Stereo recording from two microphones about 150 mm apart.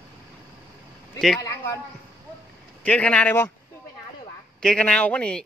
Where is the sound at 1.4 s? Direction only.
20° left (ahead or behind).